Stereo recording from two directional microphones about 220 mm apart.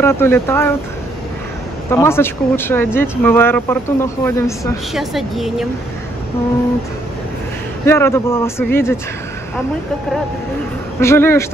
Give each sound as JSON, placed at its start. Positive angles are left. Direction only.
{"t": 0.0, "sound": "speech", "side_deg": 10}
{"t": 1.9, "sound": "speech", "side_deg": 10}
{"t": 4.9, "sound": "a woman's voice", "side_deg": 0}
{"t": 7.8, "sound": "speech", "side_deg": 10}
{"t": 11.0, "sound": "speech", "side_deg": 10}